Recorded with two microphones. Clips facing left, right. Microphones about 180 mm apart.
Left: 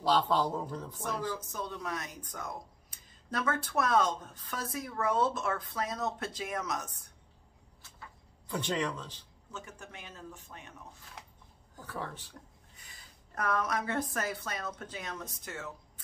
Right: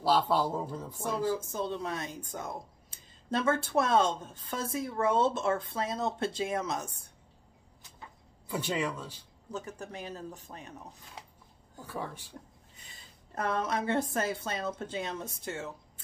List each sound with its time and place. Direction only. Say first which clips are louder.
0.0 s speech: right 1 dB; 10° right (ahead or behind)
1.4 s speech: right 5 dB; 25° right (ahead or behind)
8.5 s speech: right 1 dB; 10° right (ahead or behind)
9.5 s speech: right 7 dB; 35° right (ahead or behind)
11.8 s speech: right 2 dB; 10° right (ahead or behind)
12.7 s a woman's voice: right 2 dB; 25° right (ahead or behind)